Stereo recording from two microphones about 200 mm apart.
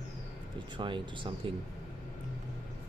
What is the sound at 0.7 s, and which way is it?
Speech, 25° right (ahead or behind).